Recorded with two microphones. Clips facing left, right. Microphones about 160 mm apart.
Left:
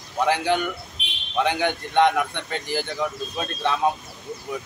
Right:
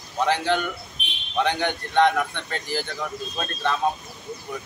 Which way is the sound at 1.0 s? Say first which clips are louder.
Right 1 dB; 90° left.